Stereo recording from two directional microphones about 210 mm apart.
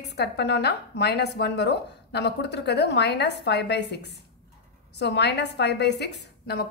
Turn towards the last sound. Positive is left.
turn(degrees=50)  # may be behind; listen again after turning